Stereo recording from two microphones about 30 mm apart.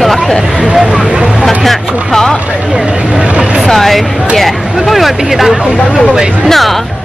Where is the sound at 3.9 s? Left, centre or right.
Centre.